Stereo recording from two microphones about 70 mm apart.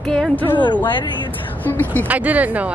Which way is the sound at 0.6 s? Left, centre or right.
Left.